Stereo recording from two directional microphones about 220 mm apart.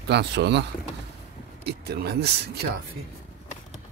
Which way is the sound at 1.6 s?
45° right (ahead or behind).